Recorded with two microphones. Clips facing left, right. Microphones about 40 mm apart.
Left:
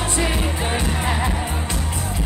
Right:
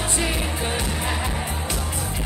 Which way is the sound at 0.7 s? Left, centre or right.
Left.